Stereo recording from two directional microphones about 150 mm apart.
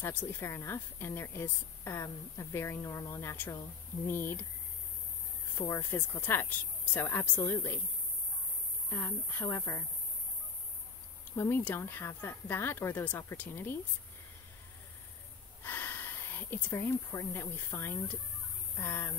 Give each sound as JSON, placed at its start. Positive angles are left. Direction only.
{"t": 0.0, "sound": "a woman's voice", "side_deg": 15}
{"t": 5.6, "sound": "a woman's voice", "side_deg": 15}
{"t": 8.9, "sound": "a woman's voice", "side_deg": 15}
{"t": 11.3, "sound": "a woman's voice", "side_deg": 15}
{"t": 15.6, "sound": "a woman's voice", "side_deg": 15}